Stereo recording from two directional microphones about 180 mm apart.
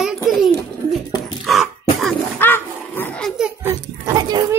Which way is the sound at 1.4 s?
Centre (ahead or behind).